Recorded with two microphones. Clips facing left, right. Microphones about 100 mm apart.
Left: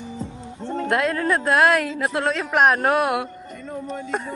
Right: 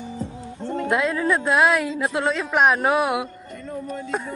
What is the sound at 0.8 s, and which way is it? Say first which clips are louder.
Speech: even; centre (ahead or behind).